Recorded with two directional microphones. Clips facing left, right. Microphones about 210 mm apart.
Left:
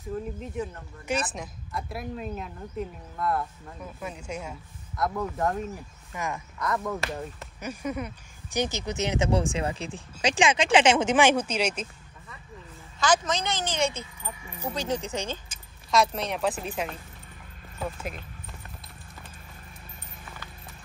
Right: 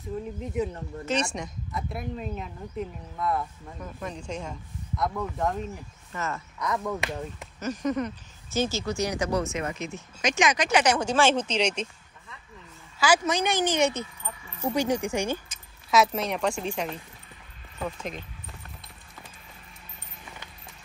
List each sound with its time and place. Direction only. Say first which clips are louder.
1.0 s speech: right 1 dB; 5° left (ahead or behind)
6.1 s speech: even; 15° left (ahead or behind)
6.6 s speech: even; centre (ahead or behind)
13.0 s a woman's voice: right 2 dB; 10° right (ahead or behind)
15.9 s speech: right 1 dB; centre (ahead or behind)